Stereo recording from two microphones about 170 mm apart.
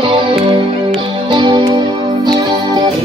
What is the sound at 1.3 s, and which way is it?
Music, 25° right (ahead or behind).